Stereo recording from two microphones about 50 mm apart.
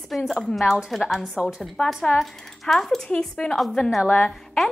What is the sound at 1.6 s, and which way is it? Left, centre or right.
A woman's voice, centre.